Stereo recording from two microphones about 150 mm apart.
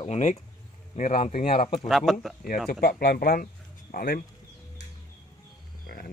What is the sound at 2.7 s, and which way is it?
Speech, 90° left.